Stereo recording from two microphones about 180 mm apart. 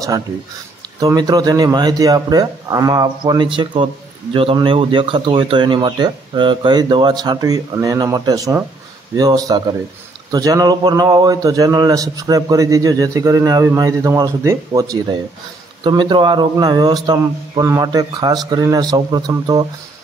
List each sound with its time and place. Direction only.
0.9 s a man's voice: 20° right (ahead or behind)